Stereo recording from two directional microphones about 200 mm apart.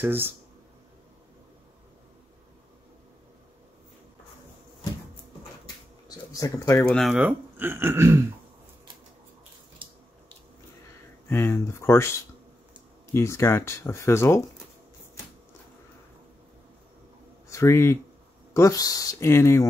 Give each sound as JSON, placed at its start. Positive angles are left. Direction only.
{"t": 0.0, "sound": "speech", "side_deg": -10}
{"t": 6.0, "sound": "a sound", "side_deg": 20}
{"t": 6.9, "sound": "speech", "side_deg": 0}
{"t": 11.2, "sound": "speech", "side_deg": 10}
{"t": 17.5, "sound": "speech", "side_deg": 15}